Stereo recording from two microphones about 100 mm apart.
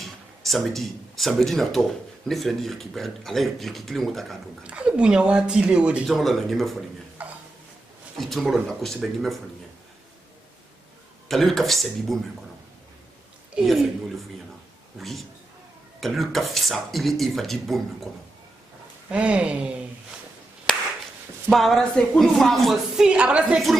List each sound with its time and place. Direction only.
0.0 s speech: centre (ahead or behind)
4.6 s speech: 10° right (ahead or behind)
6.0 s speech: centre (ahead or behind)
7.2 s a sound: 15° right (ahead or behind)
8.2 s speech: centre (ahead or behind)
11.2 s speech: centre (ahead or behind)
13.6 s speech: centre (ahead or behind)
15.0 s speech: centre (ahead or behind)
19.0 s speech: 10° right (ahead or behind)
21.5 s speech: centre (ahead or behind)
23.0 s speech: 10° right (ahead or behind)